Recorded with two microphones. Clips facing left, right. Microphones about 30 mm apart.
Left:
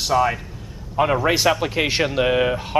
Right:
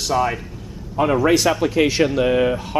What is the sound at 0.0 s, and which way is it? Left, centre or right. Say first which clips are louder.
Speech: left 1 dB; centre.